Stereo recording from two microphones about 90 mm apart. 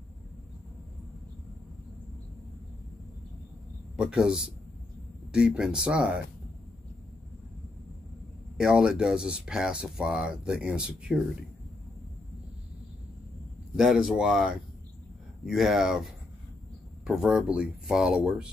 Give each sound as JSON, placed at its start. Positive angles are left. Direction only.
{"t": 3.9, "sound": "speech", "side_deg": -5}
{"t": 8.5, "sound": "speech", "side_deg": -10}
{"t": 13.7, "sound": "speech", "side_deg": -5}